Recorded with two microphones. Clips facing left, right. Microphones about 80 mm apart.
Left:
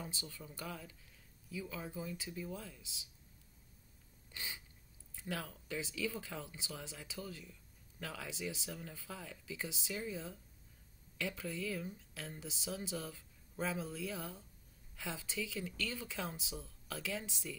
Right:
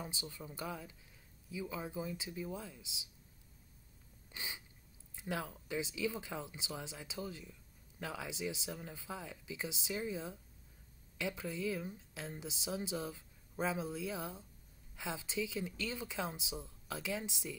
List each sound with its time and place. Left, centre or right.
0.0 s speech: centre
4.3 s a sound: centre
5.1 s speech: right